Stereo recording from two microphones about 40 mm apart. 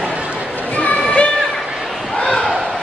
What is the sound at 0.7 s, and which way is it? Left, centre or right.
Music, left.